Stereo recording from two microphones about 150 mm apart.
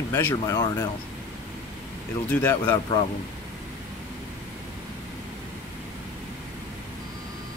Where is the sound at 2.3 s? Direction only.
15° left (ahead or behind).